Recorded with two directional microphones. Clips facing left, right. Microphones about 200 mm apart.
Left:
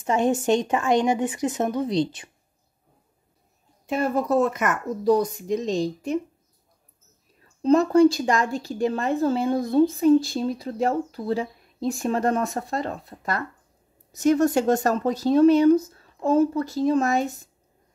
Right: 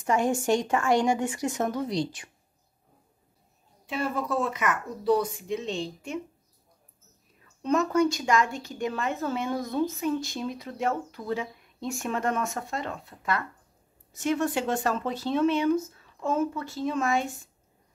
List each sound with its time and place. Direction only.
0.0 s a woman's voice: 25° left (ahead or behind)
3.8 s a woman's voice: 45° left (ahead or behind)
7.6 s a woman's voice: 30° left (ahead or behind)